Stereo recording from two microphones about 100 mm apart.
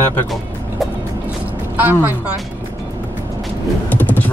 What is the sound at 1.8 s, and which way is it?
Speech, 20° right (ahead or behind).